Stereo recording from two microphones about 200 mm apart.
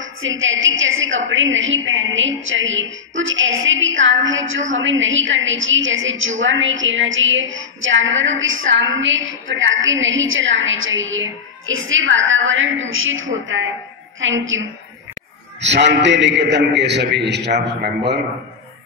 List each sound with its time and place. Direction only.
0.0 s a woman's voice: 75° right (ahead or behind); by 18.2 s 55° right (ahead or behind)